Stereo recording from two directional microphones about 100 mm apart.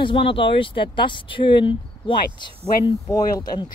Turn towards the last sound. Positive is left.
turn(degrees=40)  # may be behind; listen again after turning